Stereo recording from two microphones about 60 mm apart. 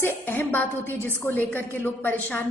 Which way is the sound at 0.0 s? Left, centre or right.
Left.